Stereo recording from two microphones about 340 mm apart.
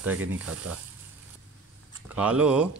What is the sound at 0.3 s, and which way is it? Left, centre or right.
Speech, right.